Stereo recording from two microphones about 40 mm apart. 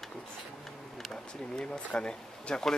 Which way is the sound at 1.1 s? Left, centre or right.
Centre.